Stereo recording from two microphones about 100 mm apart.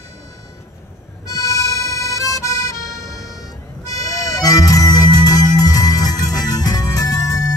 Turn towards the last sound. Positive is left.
turn(degrees=35)  # may be behind; listen again after turning